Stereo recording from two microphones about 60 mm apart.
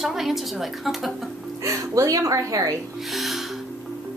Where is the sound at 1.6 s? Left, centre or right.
Right.